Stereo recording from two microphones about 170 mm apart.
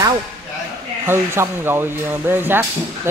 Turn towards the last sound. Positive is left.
turn(degrees=-15)  # may be behind; listen again after turning